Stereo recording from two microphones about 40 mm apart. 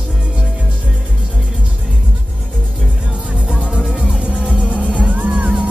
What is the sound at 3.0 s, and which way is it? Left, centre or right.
Music, right.